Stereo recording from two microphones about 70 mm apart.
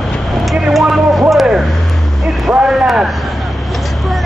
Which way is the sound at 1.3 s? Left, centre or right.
Centre.